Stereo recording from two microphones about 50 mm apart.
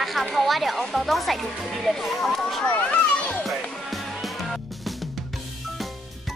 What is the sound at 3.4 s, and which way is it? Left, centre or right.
Music, centre.